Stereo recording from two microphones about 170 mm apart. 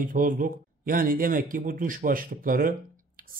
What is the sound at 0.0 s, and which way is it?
Speech, 55° right (ahead or behind).